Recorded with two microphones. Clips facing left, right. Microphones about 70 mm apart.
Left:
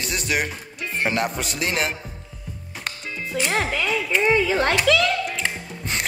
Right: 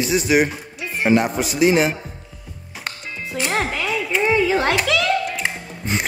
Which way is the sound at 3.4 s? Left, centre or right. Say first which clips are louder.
Right 1 dB; right.